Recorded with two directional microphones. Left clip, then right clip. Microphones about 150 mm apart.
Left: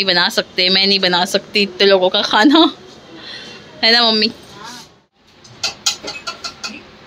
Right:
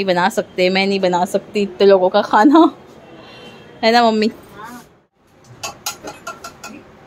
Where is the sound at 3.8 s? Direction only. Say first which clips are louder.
Left 1 dB; 15° right (ahead or behind).